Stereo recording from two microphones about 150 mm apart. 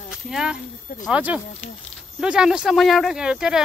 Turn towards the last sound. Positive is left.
turn(degrees=-5)  # may be behind; listen again after turning